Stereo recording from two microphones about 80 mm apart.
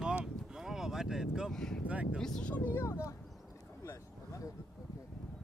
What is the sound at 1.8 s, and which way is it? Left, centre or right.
Speech, centre.